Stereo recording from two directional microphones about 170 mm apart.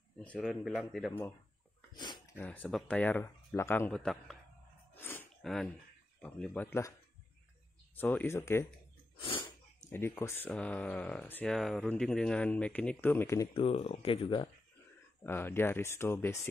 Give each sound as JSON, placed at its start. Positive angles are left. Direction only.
{"t": 0.2, "sound": "speech", "side_deg": 5}
{"t": 2.0, "sound": "a sound", "side_deg": 25}
{"t": 2.3, "sound": "speech", "side_deg": 10}
{"t": 4.9, "sound": "gasp", "side_deg": 15}
{"t": 5.4, "sound": "speech", "side_deg": 0}
{"t": 8.0, "sound": "speech", "side_deg": 10}
{"t": 9.2, "sound": "sneeze", "side_deg": 30}
{"t": 9.8, "sound": "speech", "side_deg": 15}
{"t": 13.5, "sound": "speech", "side_deg": 35}
{"t": 15.2, "sound": "speech", "side_deg": 15}